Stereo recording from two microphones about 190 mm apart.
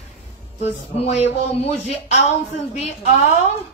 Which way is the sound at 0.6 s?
35° left (ahead or behind).